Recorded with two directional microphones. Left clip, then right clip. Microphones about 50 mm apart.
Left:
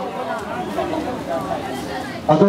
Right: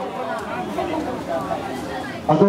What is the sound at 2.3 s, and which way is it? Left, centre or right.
Speech, left.